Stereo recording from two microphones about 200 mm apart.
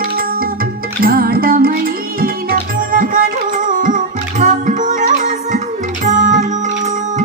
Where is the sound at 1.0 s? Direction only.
50° right (ahead or behind).